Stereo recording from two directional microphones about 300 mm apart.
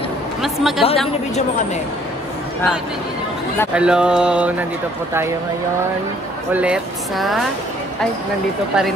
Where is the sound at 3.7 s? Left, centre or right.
Centre.